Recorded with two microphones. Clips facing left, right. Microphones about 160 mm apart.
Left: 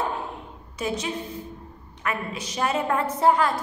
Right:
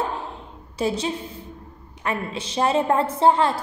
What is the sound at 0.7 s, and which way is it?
A woman's voice, 30° right (ahead or behind).